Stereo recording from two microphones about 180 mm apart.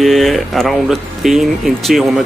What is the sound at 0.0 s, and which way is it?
Speech, centre (ahead or behind).